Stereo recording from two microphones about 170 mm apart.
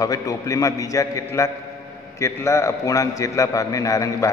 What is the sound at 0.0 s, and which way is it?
A man's voice, 20° left (ahead or behind).